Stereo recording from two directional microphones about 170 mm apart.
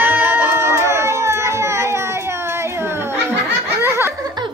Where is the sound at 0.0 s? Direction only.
10° right (ahead or behind).